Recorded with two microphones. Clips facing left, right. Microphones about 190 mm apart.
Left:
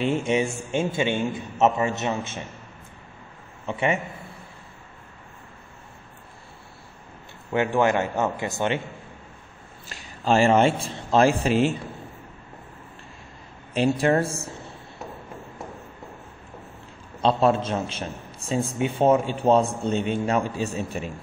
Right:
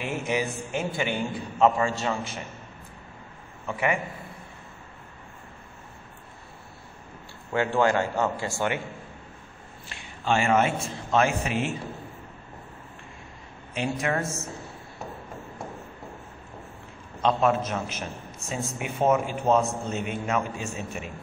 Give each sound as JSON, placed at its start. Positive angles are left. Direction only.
{"t": 0.0, "sound": "a man's voice", "side_deg": 30}
{"t": 3.6, "sound": "a man's voice", "side_deg": 25}
{"t": 7.5, "sound": "a man's voice", "side_deg": 20}
{"t": 9.8, "sound": "a man's voice", "side_deg": 40}
{"t": 13.7, "sound": "a man's voice", "side_deg": 30}
{"t": 17.2, "sound": "a man's voice", "side_deg": 30}